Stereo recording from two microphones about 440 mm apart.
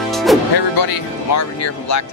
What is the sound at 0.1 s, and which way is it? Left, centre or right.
Music, centre.